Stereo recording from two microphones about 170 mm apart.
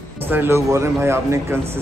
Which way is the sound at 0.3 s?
15° right (ahead or behind).